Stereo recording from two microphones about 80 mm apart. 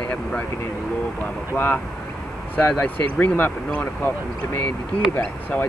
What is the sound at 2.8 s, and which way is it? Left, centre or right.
Speech, centre.